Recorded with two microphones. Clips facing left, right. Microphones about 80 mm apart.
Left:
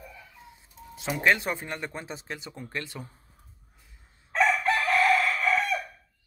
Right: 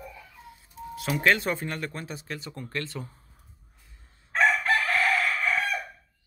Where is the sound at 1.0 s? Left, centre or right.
Centre.